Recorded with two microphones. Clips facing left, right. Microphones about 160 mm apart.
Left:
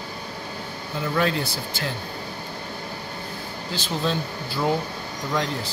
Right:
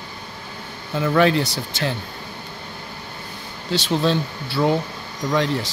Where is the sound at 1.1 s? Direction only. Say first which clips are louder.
Right 7 dB; 80° right.